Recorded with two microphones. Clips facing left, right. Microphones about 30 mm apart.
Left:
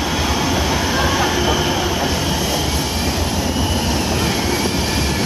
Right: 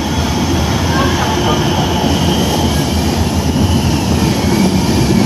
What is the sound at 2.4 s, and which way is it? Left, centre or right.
Train, centre.